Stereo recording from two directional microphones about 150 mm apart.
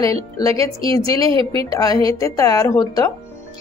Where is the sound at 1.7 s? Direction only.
25° left (ahead or behind).